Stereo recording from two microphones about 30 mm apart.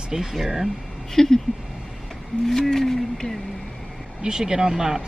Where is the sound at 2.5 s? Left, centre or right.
Centre.